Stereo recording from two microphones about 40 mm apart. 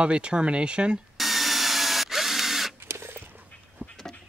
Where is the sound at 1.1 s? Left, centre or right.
Centre.